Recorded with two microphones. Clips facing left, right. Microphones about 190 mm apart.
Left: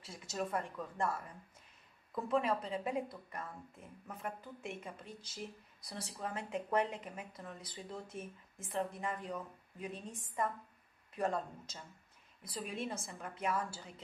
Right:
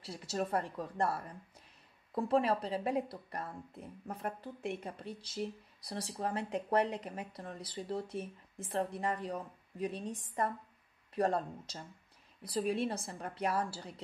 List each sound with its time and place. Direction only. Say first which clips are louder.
0.0 s a woman's voice: right 4 dB; 35° right (ahead or behind)